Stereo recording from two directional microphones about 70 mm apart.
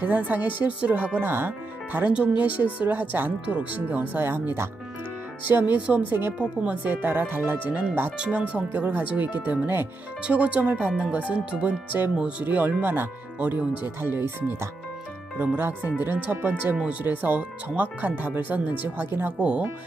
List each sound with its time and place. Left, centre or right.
0.0 s speech: right
1.2 s speech: right
8.2 s speech: centre
15.3 s speech: right